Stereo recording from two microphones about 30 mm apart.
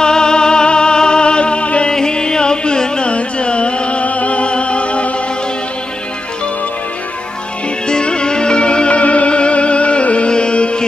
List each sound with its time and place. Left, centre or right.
0.0 s music: left
1.9 s carnatic music: left
4.0 s music: left
7.9 s music: left